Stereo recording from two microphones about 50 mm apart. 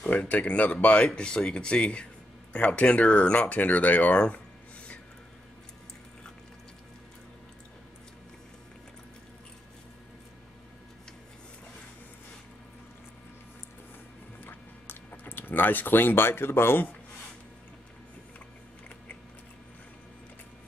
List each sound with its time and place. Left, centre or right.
0.0 s speech: left
14.4 s a sound: left
15.2 s speech: left